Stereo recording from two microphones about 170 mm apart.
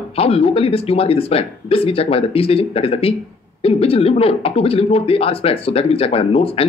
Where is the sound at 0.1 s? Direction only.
35° left (ahead or behind).